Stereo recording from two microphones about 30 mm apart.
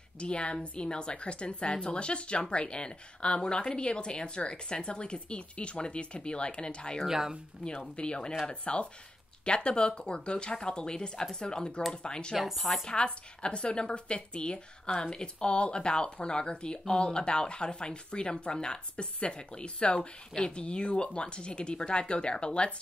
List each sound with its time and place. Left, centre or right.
0.2 s speech: left
7.1 s speech: centre
7.9 s speech: left
12.5 s speech: centre
12.8 s speech: left
15.3 s speech: left